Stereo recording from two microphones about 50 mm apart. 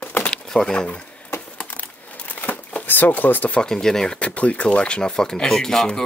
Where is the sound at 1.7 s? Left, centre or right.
Left.